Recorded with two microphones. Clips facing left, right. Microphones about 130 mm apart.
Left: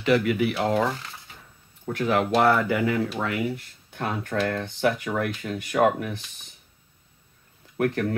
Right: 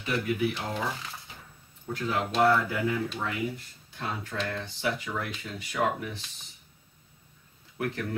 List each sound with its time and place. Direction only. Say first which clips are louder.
0.0 s speech: left 7 dB; 75° left (ahead or behind)
1.9 s speech: left 7 dB; 65° left (ahead or behind)
7.7 s speech: left 7 dB; 60° left (ahead or behind)